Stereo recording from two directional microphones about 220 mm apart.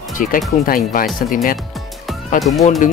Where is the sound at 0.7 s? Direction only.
40° left (ahead or behind).